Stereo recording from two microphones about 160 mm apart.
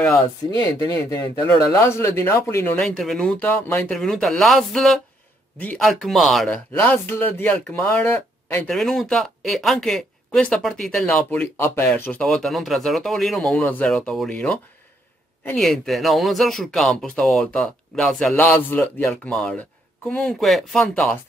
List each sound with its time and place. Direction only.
0.5 s speech: 25° left (ahead or behind)
2.8 s speech: centre (ahead or behind)
6.7 s speech: 15° left (ahead or behind)